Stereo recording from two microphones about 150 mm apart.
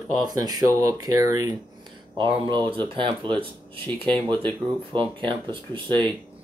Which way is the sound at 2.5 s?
35° right (ahead or behind).